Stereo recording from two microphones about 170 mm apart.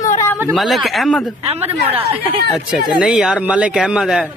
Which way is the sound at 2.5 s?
5° right (ahead or behind).